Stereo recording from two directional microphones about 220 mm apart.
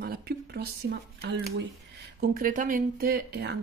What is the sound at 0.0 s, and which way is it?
Speech, 45° right (ahead or behind).